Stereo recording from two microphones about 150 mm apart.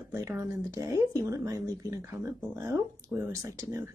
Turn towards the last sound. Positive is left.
turn(degrees=-20)  # may be behind; listen again after turning